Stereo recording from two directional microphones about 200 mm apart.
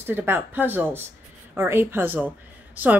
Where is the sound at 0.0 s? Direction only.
10° right (ahead or behind).